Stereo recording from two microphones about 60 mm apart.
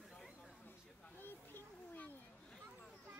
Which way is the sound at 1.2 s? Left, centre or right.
Left.